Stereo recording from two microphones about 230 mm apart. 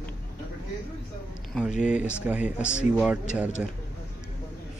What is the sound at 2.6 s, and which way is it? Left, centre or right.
Speech, left.